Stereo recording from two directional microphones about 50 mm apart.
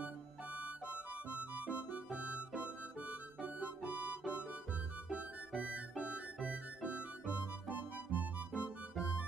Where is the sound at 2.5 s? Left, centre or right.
Right.